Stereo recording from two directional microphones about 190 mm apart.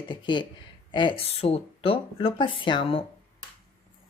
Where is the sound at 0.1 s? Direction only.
25° left (ahead or behind).